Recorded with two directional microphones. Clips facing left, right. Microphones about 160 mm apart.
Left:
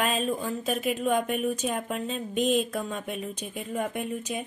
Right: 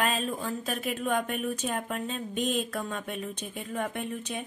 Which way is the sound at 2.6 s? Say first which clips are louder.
Left 2 dB; 10° left (ahead or behind).